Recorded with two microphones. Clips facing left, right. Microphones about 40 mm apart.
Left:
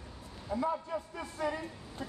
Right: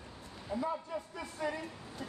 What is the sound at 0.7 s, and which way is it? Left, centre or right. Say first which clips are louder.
A man's voice: left 3 dB; left.